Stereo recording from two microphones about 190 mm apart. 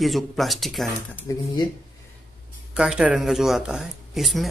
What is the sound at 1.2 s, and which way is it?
Speech, 20° left (ahead or behind).